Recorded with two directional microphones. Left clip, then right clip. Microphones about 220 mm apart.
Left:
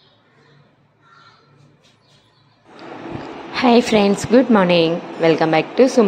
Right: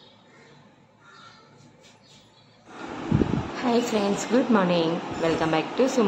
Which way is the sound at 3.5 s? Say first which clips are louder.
Left 13 dB; 30° left (ahead or behind).